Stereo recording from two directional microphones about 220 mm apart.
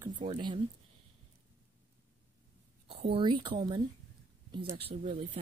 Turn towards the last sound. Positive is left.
turn(degrees=-30)  # may be behind; listen again after turning